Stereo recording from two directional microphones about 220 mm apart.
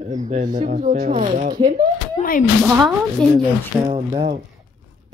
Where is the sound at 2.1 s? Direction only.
40° left (ahead or behind).